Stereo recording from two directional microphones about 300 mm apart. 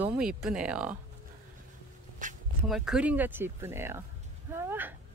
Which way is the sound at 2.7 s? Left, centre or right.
Centre.